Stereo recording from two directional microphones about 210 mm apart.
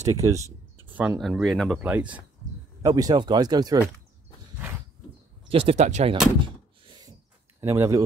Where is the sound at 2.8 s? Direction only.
15° right (ahead or behind).